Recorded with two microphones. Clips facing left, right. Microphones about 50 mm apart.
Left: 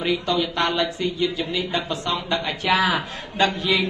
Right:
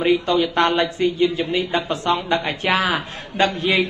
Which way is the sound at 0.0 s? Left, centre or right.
Right.